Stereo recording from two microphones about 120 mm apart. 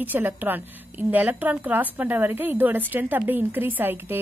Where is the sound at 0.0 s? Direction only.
15° right (ahead or behind).